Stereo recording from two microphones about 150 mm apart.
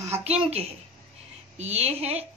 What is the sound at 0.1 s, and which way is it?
A woman's voice, 45° right (ahead or behind).